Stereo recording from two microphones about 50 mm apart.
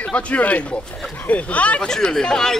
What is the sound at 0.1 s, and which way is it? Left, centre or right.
Speech, left.